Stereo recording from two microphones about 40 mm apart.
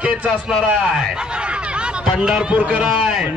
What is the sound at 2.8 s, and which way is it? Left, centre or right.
Speech, centre.